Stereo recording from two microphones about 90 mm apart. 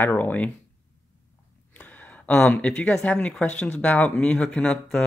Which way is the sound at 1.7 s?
20° left (ahead or behind).